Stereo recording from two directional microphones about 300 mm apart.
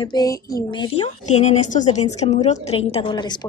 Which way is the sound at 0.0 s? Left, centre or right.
Centre.